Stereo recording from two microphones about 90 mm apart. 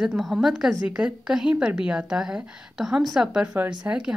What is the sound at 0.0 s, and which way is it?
A woman's voice, 5° right (ahead or behind).